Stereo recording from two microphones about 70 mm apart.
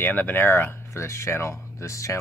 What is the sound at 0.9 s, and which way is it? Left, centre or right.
Speech, left.